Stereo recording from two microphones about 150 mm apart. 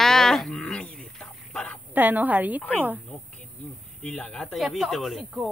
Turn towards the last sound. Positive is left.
turn(degrees=0)  # may be behind; listen again after turning